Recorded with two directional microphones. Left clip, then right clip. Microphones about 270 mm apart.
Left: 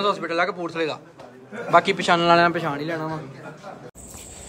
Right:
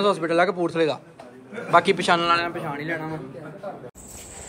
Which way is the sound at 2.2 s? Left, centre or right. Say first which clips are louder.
Left 5 dB; left.